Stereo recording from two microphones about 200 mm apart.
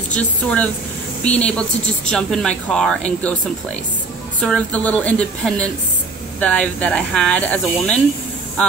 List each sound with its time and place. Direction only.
0.1 s a woman's voice: 5° left (ahead or behind)